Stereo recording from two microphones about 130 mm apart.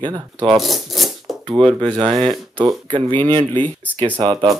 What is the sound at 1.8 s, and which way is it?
Speech, 40° right (ahead or behind).